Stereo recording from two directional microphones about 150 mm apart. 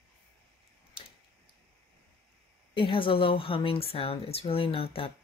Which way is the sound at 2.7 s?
35° left (ahead or behind).